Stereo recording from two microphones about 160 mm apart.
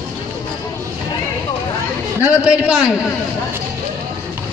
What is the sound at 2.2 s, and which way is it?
Speech, 5° right (ahead or behind).